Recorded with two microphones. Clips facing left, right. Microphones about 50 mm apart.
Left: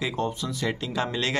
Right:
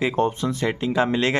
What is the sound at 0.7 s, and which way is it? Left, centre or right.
Speech, right.